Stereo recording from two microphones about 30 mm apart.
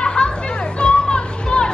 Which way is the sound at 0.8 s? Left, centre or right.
Left.